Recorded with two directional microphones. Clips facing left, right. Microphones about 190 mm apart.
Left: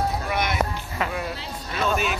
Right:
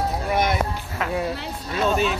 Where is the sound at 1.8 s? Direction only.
30° right (ahead or behind).